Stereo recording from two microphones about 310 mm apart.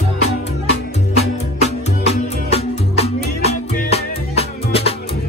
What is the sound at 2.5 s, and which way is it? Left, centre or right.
Music, centre.